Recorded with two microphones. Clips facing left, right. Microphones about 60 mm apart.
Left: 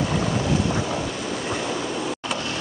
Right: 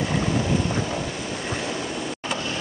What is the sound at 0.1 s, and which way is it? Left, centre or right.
Vehicle, centre.